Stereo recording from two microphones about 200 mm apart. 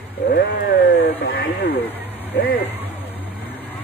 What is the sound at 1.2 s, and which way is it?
Speech, 50° left (ahead or behind).